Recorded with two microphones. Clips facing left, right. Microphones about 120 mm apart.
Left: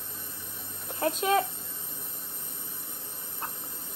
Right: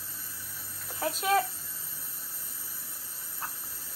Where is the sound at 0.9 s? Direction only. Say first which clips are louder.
Left 2 dB; 20° left (ahead or behind).